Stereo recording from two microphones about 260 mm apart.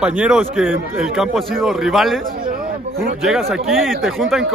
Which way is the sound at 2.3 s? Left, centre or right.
Right.